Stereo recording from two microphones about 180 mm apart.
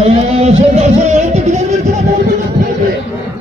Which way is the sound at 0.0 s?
35° right (ahead or behind).